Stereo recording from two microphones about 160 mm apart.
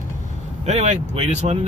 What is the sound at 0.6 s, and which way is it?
Speech, 45° right (ahead or behind).